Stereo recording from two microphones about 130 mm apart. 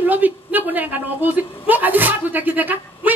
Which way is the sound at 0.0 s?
15° right (ahead or behind).